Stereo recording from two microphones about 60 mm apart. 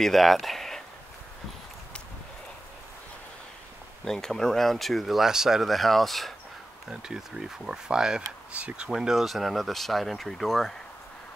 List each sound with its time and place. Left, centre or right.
0.0 s speech: centre
4.0 s speech: centre
6.9 s speech: centre
8.9 s speech: centre